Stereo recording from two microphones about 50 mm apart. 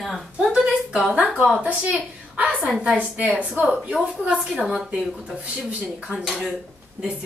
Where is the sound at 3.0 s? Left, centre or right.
Right.